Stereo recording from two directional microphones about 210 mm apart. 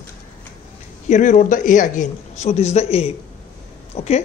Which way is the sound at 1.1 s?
35° left (ahead or behind).